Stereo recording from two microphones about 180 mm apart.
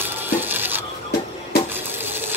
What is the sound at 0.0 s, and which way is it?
Stir, 10° right (ahead or behind).